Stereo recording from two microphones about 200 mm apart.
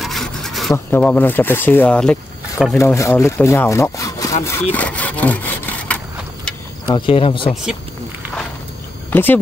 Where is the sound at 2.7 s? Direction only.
15° left (ahead or behind).